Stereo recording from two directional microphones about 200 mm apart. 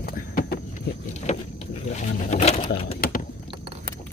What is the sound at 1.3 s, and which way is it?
Vehicle, 35° left (ahead or behind).